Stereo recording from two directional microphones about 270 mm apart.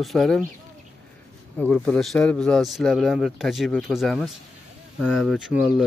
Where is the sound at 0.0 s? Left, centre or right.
Centre.